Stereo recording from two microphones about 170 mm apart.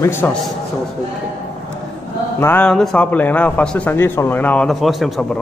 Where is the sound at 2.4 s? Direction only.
10° left (ahead or behind).